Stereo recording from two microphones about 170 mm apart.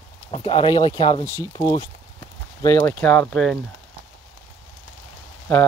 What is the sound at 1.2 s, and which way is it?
Speech, 15° right (ahead or behind).